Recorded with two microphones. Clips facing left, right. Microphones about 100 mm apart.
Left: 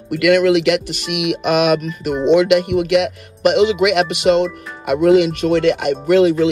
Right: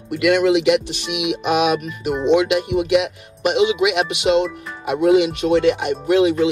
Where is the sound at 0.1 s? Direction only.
60° left (ahead or behind).